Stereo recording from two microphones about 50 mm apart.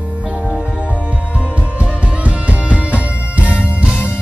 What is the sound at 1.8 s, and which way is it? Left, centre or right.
Music, right.